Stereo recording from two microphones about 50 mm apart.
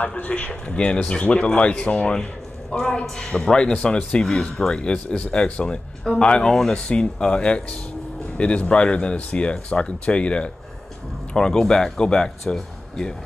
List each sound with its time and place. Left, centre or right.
0.2 s speech: left